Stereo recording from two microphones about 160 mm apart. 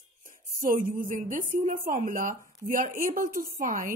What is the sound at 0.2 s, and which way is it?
A woman's voice, 55° right (ahead or behind).